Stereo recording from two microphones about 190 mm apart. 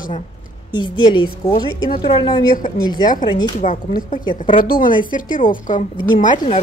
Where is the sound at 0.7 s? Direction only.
25° left (ahead or behind).